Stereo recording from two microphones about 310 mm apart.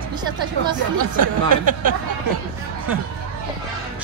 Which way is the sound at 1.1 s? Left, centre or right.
Right.